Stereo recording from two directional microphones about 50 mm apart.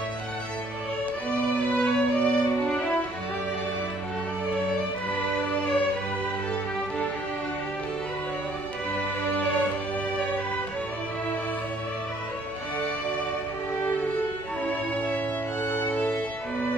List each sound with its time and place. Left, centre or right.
1.8 s music: left
15.6 s music: left